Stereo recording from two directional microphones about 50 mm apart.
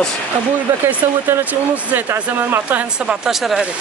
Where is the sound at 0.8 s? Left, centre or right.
Right.